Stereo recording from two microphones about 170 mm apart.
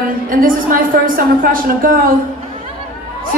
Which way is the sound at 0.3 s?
55° right (ahead or behind).